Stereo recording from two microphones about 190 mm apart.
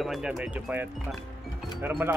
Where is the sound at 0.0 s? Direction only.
Centre (ahead or behind).